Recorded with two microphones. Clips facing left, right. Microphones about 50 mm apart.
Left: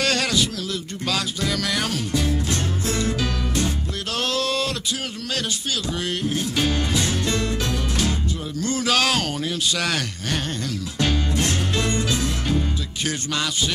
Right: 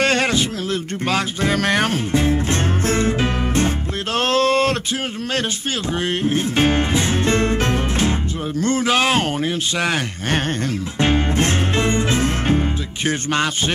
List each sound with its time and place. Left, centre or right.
0.0 s a sound: right
1.0 s music: right
5.9 s music: right
8.8 s speech: right
11.0 s music: right